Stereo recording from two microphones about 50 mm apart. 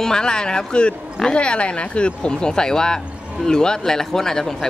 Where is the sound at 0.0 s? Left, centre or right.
Centre.